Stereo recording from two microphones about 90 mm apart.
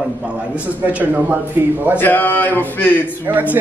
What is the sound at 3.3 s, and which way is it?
Speech, 20° right (ahead or behind).